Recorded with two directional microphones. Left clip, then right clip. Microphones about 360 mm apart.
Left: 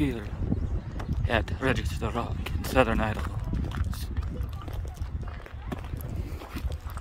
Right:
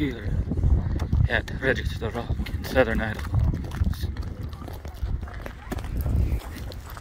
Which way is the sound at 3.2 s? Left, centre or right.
Right.